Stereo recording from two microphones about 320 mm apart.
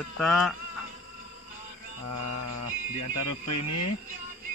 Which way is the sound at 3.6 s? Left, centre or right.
Left.